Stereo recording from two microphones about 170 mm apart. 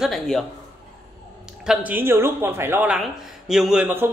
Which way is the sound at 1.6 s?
5° right (ahead or behind).